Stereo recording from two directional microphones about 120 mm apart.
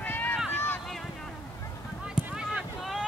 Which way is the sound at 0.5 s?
15° left (ahead or behind).